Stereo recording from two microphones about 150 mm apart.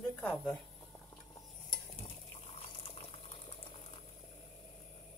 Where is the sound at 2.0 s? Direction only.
40° left (ahead or behind).